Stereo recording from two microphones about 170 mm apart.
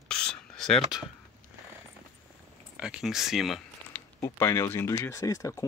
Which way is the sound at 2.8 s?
5° right (ahead or behind).